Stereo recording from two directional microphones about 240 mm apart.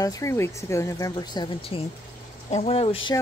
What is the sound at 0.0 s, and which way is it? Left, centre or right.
Speech, centre.